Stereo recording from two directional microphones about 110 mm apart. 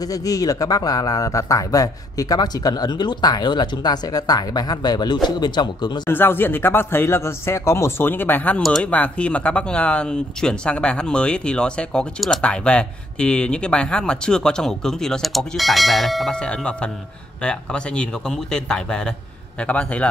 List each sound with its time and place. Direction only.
0.0 s speech: 35° left (ahead or behind)
6.0 s speech: 20° left (ahead or behind)
8.6 s speech: 5° left (ahead or behind)